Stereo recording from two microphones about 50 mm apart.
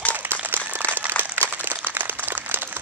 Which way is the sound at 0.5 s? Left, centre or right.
Right.